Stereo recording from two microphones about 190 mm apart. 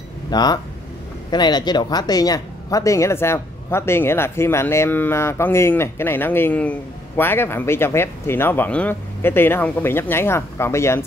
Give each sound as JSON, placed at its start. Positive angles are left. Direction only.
{"t": 0.3, "sound": "speech", "side_deg": 20}